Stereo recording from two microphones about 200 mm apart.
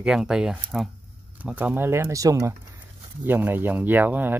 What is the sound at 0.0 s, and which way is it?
Speech, 5° right (ahead or behind).